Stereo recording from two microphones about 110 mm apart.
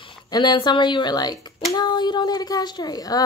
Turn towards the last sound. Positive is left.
turn(degrees=35)  # may be behind; listen again after turning